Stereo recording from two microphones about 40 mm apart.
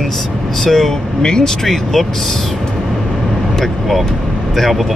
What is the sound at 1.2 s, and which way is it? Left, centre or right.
Speech, centre.